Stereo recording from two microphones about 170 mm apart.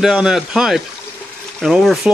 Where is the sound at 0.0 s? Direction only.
Centre (ahead or behind).